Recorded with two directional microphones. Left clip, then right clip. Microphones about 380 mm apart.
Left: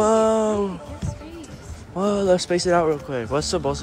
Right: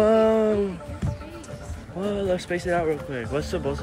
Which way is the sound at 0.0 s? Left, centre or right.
Centre.